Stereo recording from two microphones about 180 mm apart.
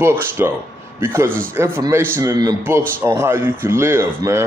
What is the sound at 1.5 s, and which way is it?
Speech, 15° right (ahead or behind).